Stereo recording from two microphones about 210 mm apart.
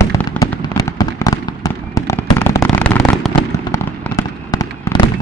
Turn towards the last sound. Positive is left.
turn(degrees=15)  # may be behind; listen again after turning